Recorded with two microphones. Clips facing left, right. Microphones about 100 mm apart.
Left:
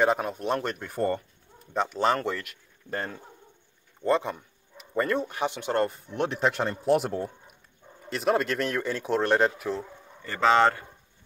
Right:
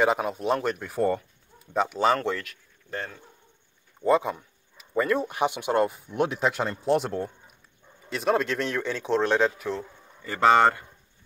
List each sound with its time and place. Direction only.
0.0 s speech: 5° right (ahead or behind)
2.9 s speech: 40° left (ahead or behind)
4.0 s a sound: 5° right (ahead or behind)
5.3 s speech: 15° right (ahead or behind); by 9.8 s 5° left (ahead or behind)
10.2 s speech: 10° right (ahead or behind)